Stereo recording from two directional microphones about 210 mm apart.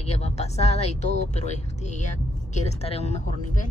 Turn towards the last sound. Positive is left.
turn(degrees=30)  # may be behind; listen again after turning